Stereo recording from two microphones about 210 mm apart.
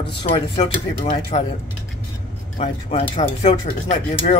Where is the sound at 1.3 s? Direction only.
35° left (ahead or behind).